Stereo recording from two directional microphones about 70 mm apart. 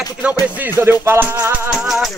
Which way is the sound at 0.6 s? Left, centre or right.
Right.